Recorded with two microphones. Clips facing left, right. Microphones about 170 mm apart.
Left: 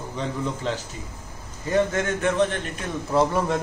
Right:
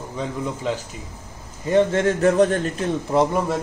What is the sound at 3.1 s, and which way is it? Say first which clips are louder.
Speech: right 1 dB; 15° right (ahead or behind).